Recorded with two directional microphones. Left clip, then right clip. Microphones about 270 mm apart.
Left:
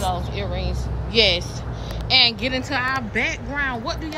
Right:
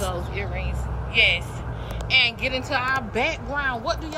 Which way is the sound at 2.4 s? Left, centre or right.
Centre.